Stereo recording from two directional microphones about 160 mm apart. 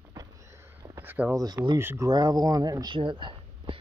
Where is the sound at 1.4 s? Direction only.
25° right (ahead or behind).